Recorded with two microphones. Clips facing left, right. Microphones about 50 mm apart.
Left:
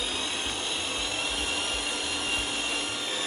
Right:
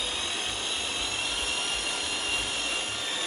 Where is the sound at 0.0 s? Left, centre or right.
Centre.